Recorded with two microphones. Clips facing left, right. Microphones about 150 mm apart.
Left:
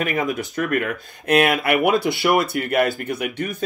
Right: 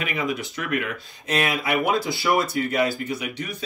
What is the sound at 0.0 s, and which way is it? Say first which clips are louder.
Speech: left 4 dB; 45° left (ahead or behind).